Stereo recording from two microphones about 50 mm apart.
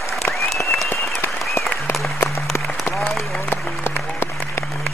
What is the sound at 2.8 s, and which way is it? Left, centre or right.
Applause, left.